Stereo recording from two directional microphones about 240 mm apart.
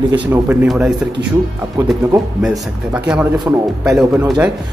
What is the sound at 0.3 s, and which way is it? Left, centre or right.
Speech, centre.